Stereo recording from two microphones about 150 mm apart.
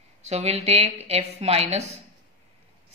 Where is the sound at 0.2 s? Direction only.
45° right (ahead or behind).